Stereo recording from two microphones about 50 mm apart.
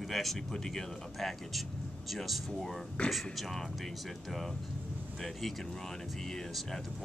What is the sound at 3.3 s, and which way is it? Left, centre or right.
Speech, centre.